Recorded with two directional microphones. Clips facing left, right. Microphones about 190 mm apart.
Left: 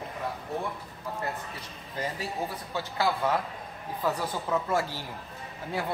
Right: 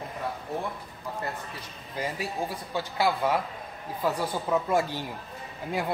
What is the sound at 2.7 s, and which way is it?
Speech, 15° right (ahead or behind).